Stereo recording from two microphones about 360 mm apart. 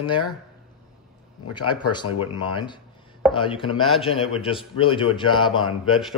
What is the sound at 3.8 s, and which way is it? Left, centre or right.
Speech, centre.